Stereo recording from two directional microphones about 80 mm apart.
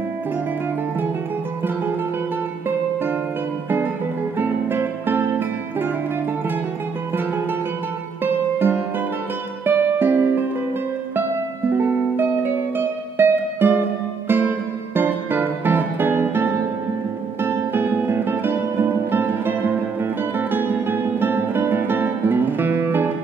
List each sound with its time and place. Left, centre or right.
3.6 s music: right
8.2 s music: right
11.7 s music: right
17.4 s guitar: right